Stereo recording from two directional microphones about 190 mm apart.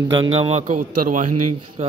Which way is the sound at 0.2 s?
30° right (ahead or behind).